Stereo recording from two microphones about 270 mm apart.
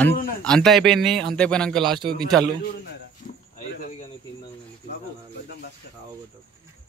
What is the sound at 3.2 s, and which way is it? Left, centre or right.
Cricket, left.